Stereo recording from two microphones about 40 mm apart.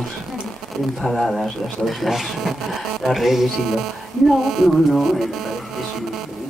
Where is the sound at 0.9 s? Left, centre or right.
Centre.